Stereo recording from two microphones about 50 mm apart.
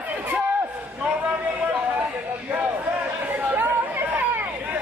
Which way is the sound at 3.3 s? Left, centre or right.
Right.